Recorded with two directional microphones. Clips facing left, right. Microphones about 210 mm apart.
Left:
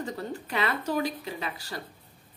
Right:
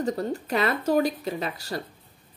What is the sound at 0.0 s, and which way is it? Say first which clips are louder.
Speech: right 7 dB; 40° right (ahead or behind).